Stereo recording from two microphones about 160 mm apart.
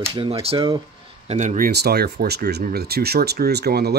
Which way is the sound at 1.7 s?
90° right.